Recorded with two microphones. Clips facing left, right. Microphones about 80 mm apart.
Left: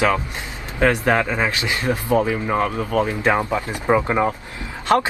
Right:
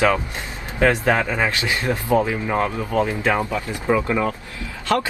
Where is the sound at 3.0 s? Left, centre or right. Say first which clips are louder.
Left 1 dB; left.